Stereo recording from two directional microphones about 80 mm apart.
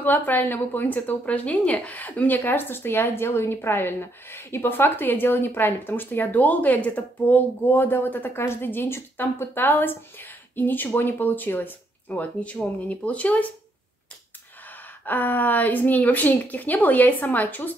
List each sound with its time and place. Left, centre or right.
0.0 s a woman's voice: left
15.0 s a woman's voice: left